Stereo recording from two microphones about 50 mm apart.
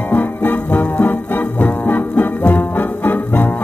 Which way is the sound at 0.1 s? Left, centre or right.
Left.